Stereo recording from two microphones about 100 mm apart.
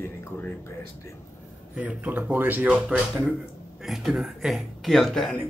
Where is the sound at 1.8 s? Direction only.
15° right (ahead or behind).